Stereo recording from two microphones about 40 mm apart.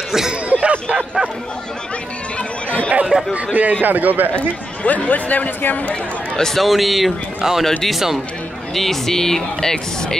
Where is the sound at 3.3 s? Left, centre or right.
Right.